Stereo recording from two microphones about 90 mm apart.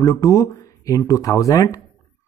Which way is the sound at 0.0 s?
40° left (ahead or behind).